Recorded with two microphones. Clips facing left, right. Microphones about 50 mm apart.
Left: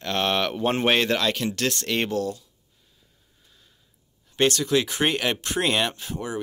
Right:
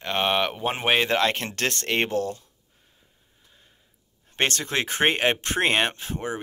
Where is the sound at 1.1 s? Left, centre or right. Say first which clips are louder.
Right 1 dB; right.